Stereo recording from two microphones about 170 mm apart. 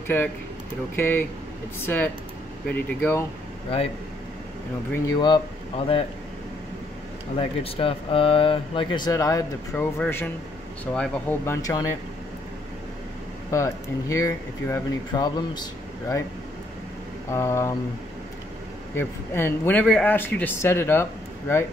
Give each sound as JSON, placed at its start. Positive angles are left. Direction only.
{"t": 0.1, "sound": "speech", "side_deg": 10}
{"t": 5.0, "sound": "speech", "side_deg": 25}
{"t": 7.3, "sound": "speech", "side_deg": 35}
{"t": 13.5, "sound": "speech", "side_deg": 20}
{"t": 17.3, "sound": "speech", "side_deg": 15}
{"t": 18.9, "sound": "speech", "side_deg": 15}